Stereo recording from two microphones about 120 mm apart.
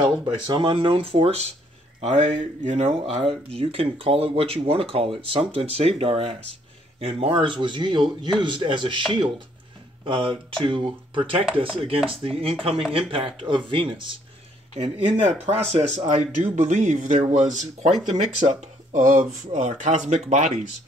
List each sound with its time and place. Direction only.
0.2 s speech: 45° right (ahead or behind)
2.0 s speech: 65° right (ahead or behind)
2.9 s speech: 55° right (ahead or behind)
14.8 s speech: 65° right (ahead or behind)
16.1 s speech: 75° right (ahead or behind)